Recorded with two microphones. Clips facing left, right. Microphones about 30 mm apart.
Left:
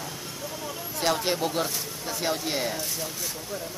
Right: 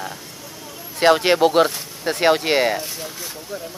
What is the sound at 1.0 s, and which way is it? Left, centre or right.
Speech, right.